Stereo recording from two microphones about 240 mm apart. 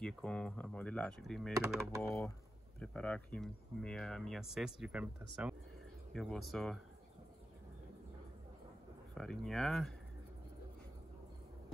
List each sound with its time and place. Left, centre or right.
0.0 s speech: centre
9.1 s speech: centre